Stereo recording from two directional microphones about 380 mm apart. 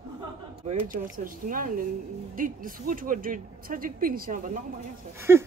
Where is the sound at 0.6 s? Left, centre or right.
Centre.